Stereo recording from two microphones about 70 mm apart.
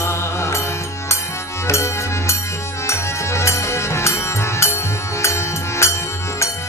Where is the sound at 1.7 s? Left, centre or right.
Left.